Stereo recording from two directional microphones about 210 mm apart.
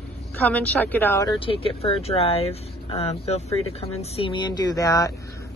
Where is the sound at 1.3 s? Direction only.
25° left (ahead or behind).